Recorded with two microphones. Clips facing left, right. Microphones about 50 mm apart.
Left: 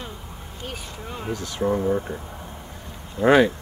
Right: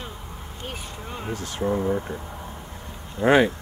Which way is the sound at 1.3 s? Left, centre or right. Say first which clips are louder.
Even; right.